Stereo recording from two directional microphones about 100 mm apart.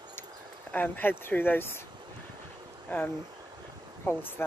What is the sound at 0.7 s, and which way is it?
Speech, 20° left (ahead or behind).